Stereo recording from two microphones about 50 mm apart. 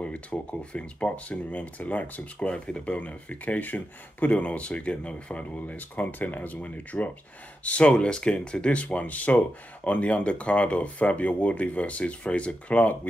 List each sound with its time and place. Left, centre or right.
0.0 s speech: left